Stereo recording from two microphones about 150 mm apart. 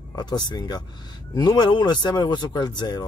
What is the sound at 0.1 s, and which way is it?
Speech, 30° left (ahead or behind).